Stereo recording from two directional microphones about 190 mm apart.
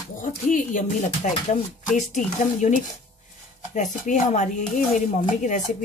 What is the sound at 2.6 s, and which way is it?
Speech, 35° left (ahead or behind).